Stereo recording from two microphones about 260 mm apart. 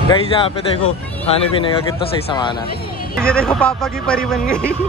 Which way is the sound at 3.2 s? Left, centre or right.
Centre.